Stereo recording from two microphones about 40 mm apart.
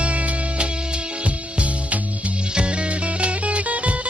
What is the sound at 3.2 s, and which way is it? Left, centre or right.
Music, right.